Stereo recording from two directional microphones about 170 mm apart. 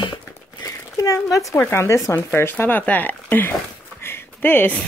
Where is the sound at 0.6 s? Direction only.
20° left (ahead or behind).